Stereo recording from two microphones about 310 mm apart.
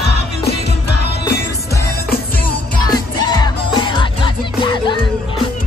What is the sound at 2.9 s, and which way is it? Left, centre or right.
Music, centre.